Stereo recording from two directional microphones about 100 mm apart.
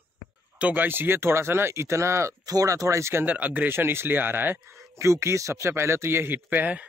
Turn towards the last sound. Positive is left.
turn(degrees=-15)  # may be behind; listen again after turning